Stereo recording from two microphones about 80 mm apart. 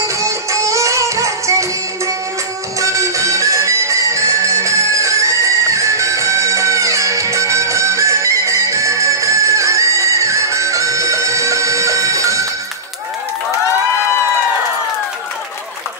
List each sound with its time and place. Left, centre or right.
0.0 s music: right